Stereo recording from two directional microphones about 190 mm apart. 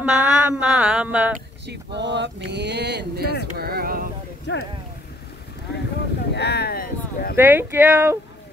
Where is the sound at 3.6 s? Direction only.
55° right (ahead or behind).